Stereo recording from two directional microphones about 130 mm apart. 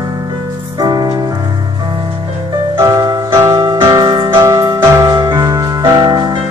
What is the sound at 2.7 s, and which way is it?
Music, 25° right (ahead or behind).